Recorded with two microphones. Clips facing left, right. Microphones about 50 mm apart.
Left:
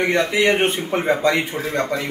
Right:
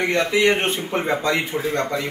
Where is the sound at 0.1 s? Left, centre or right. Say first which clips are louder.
Right 2 dB; left.